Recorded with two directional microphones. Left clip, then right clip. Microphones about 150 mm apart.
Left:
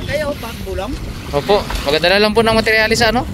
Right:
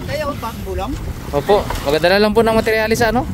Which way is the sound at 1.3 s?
20° right (ahead or behind).